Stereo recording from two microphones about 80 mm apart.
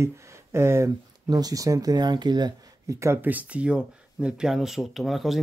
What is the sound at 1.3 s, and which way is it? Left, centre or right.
Speech, right.